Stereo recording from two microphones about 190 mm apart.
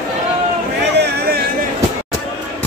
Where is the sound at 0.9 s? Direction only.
55° right (ahead or behind).